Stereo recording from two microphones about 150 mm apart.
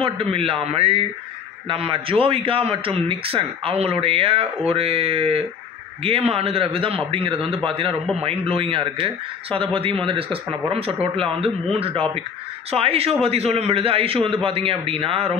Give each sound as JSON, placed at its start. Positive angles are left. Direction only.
{"t": 0.0, "sound": "a man's voice", "side_deg": -40}